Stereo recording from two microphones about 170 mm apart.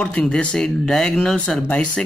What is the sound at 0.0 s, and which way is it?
Speech, 5° left (ahead or behind).